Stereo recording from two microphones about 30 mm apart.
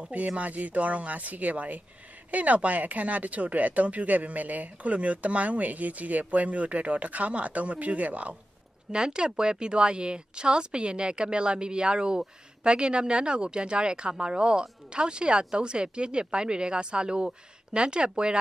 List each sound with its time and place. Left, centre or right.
0.4 s speech: right
8.9 s speech: right